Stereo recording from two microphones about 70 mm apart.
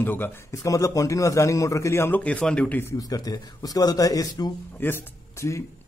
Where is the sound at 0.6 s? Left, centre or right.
Left.